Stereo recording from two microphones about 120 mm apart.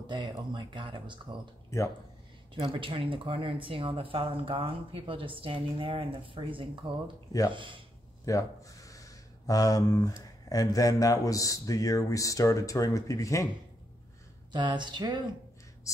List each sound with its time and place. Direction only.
0.0 s speech: 40° right (ahead or behind)
1.7 s speech: 25° left (ahead or behind)
2.5 s speech: 45° right (ahead or behind)
8.3 s speech: 30° left (ahead or behind)
14.5 s speech: 40° right (ahead or behind)